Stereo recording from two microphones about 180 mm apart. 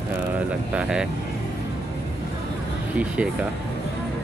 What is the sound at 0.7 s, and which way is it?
Speech, 5° right (ahead or behind).